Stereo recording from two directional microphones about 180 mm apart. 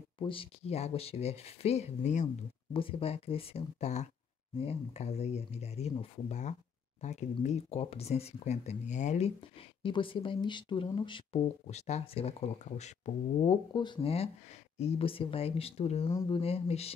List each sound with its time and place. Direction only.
0.2 s speech: 30° left (ahead or behind)
9.8 s speech: 30° left (ahead or behind)